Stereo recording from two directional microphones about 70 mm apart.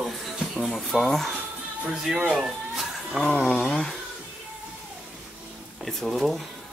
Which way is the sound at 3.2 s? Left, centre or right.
Centre.